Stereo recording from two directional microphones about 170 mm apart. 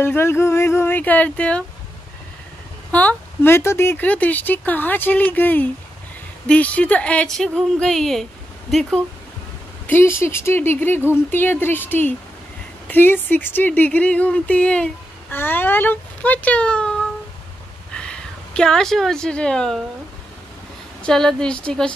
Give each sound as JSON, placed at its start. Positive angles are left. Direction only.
{"t": 0.0, "sound": "speech", "side_deg": 15}
{"t": 2.9, "sound": "speech", "side_deg": 10}
{"t": 9.8, "sound": "a woman's voice", "side_deg": 15}
{"t": 21.0, "sound": "speech", "side_deg": 5}